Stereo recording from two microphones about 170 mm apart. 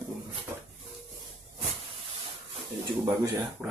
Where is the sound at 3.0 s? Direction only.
20° right (ahead or behind).